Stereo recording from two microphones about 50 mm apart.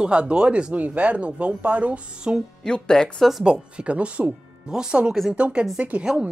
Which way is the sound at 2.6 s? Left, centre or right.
Centre.